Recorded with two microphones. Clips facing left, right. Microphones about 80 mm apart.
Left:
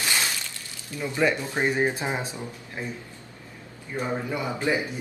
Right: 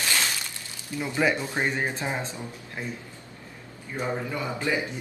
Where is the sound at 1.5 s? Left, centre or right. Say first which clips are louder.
Left 3 dB; centre.